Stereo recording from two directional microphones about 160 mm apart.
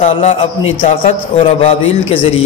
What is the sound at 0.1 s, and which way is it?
A man's voice, 35° left (ahead or behind).